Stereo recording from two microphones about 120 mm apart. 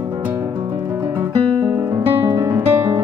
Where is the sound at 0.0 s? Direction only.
15° right (ahead or behind).